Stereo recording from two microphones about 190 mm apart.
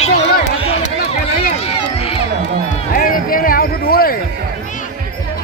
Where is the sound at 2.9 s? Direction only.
50° left (ahead or behind).